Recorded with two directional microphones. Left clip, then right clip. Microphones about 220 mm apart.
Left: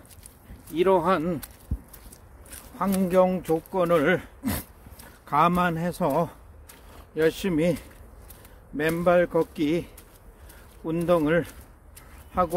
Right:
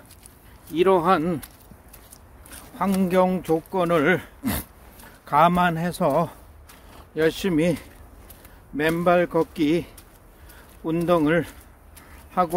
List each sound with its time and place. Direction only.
0.7 s a man's voice: 15° right (ahead or behind)
2.8 s a man's voice: 15° right (ahead or behind)
11.1 s a man's voice: 15° right (ahead or behind)